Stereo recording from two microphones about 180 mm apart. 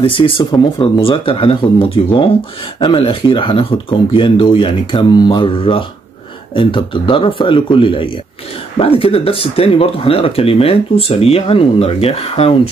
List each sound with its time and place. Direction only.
0.0 s speech: 25° left (ahead or behind)